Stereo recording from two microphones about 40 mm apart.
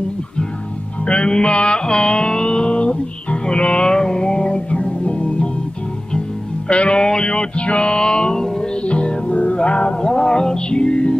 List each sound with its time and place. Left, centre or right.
1.0 s music: left
6.7 s music: left
8.8 s music: left